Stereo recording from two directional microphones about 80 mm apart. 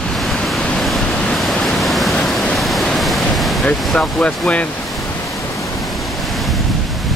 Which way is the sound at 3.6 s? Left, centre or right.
Centre.